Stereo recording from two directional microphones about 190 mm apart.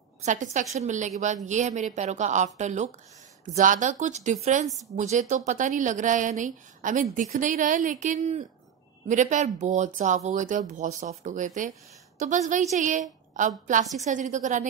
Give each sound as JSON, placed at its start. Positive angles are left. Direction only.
{"t": 0.2, "sound": "speech", "side_deg": -40}
{"t": 4.6, "sound": "a woman's voice", "side_deg": 0}
{"t": 4.9, "sound": "a woman's voice", "side_deg": -40}